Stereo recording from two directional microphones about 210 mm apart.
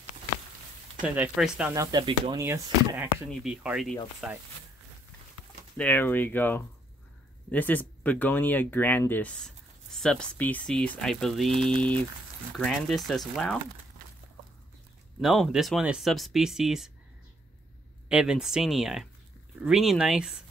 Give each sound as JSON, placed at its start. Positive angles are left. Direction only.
{"t": 1.0, "sound": "speech", "side_deg": -5}
{"t": 1.7, "sound": "speech", "side_deg": -15}
{"t": 3.3, "sound": "speech", "side_deg": 0}
{"t": 5.8, "sound": "speech", "side_deg": 10}
{"t": 15.1, "sound": "speech", "side_deg": 0}
{"t": 18.0, "sound": "speech", "side_deg": -5}